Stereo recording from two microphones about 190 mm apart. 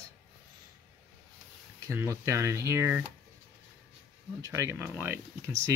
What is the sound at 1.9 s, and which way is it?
Speech, 15° right (ahead or behind).